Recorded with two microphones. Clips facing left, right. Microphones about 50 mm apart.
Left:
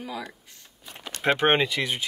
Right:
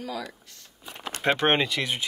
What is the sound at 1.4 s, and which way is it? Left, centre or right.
Speech, centre.